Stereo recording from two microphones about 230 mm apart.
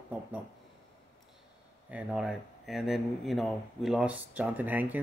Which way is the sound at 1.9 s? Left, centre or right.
Centre.